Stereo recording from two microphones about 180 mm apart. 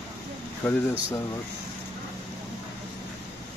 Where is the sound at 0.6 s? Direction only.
5° left (ahead or behind).